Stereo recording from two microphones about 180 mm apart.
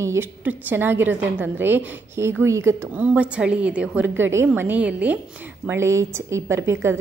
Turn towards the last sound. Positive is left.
turn(degrees=-15)  # may be behind; listen again after turning